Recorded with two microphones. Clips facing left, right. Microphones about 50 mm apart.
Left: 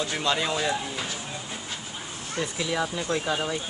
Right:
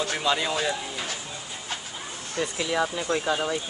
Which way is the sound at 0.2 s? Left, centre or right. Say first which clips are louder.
Even; centre.